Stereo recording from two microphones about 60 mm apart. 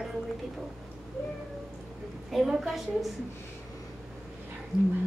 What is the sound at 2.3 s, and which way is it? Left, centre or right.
Speech, centre.